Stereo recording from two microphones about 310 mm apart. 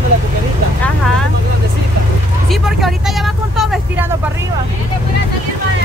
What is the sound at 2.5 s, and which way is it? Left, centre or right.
Vehicle, centre.